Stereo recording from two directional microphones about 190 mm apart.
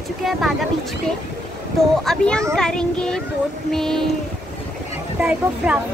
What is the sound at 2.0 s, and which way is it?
Speech, 5° left (ahead or behind).